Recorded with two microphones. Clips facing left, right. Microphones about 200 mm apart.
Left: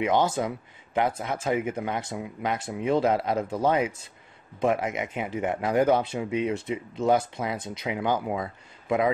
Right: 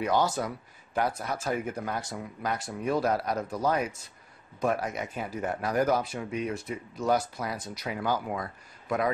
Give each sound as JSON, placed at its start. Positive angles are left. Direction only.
{"t": 0.0, "sound": "speech", "side_deg": 20}